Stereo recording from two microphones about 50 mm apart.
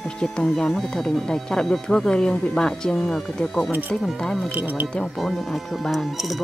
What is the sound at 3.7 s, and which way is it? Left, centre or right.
Speech, right.